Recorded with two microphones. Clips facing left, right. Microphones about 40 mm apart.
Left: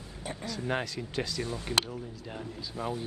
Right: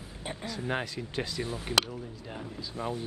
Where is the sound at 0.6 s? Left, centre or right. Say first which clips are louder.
Left 1 dB; centre.